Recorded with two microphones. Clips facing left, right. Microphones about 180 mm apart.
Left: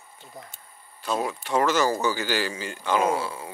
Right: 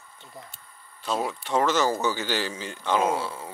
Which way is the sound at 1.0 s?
5° left (ahead or behind).